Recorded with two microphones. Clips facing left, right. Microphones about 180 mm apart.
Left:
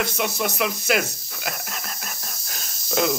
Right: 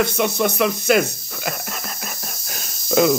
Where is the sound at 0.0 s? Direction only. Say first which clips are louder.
Right 6 dB; 5° left (ahead or behind).